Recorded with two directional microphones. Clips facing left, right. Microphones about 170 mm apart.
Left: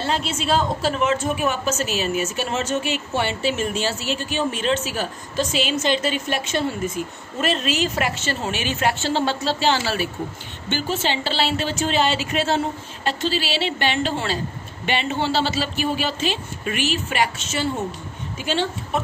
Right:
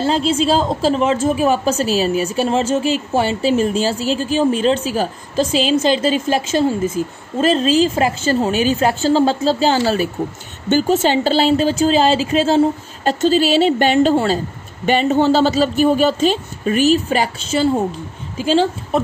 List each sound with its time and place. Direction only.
0.1 s a woman's voice: 30° right (ahead or behind)